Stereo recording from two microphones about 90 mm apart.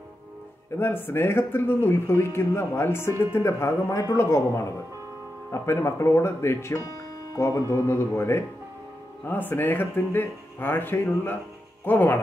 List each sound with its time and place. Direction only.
0.7 s speech: 25° left (ahead or behind)